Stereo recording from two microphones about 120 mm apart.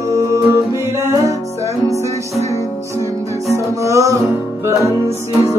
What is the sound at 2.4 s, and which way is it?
Music, 25° left (ahead or behind).